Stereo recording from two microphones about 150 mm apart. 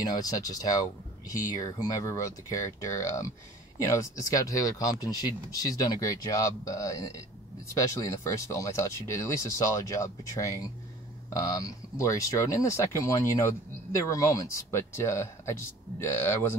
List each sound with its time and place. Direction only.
0.0 s speech: 25° left (ahead or behind)